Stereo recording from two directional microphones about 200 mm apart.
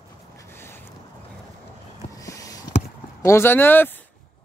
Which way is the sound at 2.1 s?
15° left (ahead or behind).